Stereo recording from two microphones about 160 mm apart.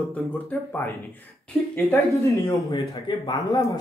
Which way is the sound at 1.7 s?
20° left (ahead or behind).